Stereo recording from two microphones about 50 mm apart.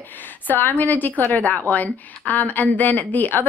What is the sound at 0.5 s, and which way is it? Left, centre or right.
A woman's voice, left.